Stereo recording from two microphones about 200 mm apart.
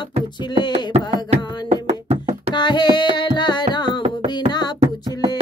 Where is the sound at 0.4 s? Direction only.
20° left (ahead or behind).